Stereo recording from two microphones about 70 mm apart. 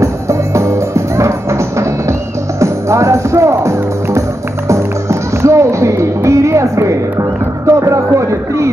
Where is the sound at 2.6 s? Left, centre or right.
Right.